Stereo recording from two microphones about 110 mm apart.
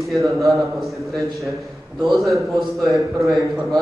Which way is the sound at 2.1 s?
Centre (ahead or behind).